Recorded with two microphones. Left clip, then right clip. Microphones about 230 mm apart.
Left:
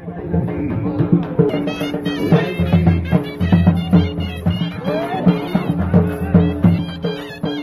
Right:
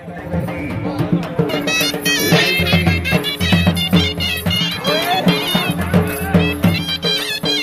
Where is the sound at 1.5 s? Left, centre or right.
Right.